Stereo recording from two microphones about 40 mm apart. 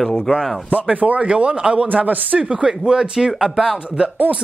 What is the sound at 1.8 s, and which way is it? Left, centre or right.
Speech, right.